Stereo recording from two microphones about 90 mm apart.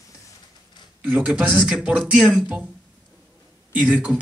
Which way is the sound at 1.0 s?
20° right (ahead or behind).